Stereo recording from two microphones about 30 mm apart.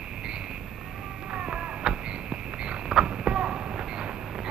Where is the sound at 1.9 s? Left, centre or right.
Right.